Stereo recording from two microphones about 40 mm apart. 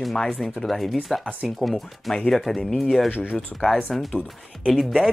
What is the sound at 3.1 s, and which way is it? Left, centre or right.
Speech, left.